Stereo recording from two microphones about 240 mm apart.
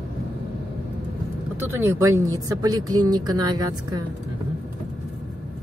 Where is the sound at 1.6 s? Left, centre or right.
Centre.